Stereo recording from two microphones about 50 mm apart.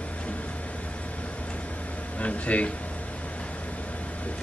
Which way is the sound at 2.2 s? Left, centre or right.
Left.